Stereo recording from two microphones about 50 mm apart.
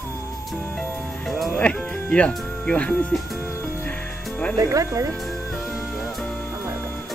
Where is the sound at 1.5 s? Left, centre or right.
Left.